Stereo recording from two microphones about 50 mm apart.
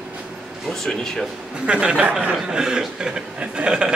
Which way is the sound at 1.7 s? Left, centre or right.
Centre.